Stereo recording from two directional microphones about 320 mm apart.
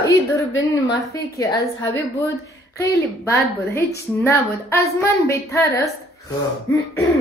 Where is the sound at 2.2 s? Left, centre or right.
Centre.